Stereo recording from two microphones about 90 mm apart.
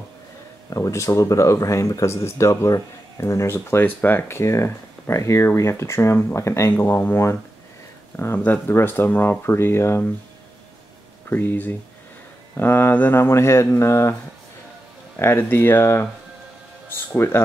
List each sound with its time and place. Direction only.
0.7 s speech: 35° left (ahead or behind)
8.2 s speech: 25° left (ahead or behind)
11.2 s speech: 20° left (ahead or behind)
15.1 s speech: 25° left (ahead or behind)
17.2 s speech: 30° left (ahead or behind)